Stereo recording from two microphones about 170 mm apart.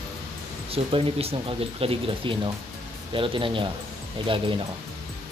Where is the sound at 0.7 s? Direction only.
35° right (ahead or behind).